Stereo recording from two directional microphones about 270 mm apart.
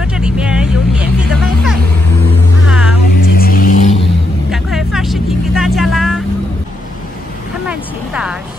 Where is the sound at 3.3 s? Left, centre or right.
Left.